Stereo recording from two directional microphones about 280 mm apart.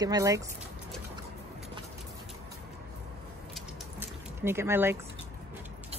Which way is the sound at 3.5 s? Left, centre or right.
Centre.